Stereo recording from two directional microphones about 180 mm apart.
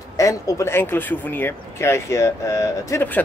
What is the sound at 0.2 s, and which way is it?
Speech, 15° left (ahead or behind).